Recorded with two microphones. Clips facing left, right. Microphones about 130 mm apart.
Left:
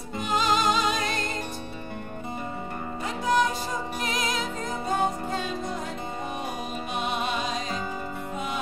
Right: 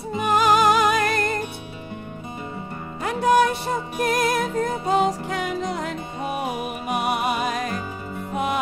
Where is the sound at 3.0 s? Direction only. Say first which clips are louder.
Right 6 dB; 65° right (ahead or behind).